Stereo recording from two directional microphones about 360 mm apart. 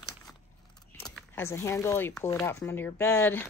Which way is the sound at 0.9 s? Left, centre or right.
Centre.